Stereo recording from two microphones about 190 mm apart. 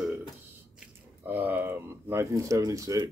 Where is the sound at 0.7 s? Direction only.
10° right (ahead or behind).